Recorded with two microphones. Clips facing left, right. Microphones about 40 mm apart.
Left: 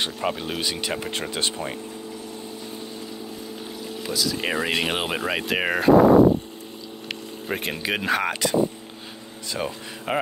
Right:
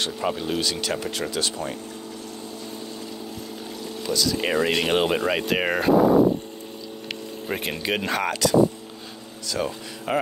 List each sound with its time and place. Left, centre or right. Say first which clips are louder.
0.0 s speech: even; centre
4.0 s speech: right 2 dB; centre
7.4 s speech: even; centre
8.3 s speech: right 2 dB; left
9.5 s speech: right 2 dB; centre